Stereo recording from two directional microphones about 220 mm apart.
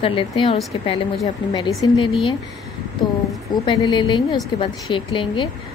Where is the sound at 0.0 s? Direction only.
25° left (ahead or behind).